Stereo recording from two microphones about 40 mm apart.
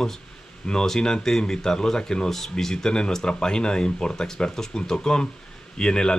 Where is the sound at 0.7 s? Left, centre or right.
Centre.